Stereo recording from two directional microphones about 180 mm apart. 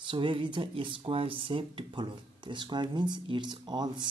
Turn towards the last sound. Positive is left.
turn(degrees=-25)  # may be behind; listen again after turning